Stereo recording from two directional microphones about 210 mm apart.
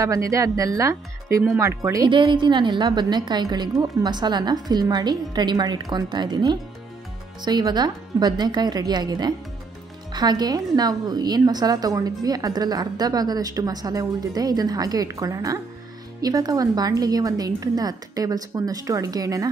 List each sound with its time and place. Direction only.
0.0 s a woman's voice: 15° right (ahead or behind)